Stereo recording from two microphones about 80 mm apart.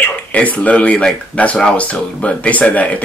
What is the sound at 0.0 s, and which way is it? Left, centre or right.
Speech, centre.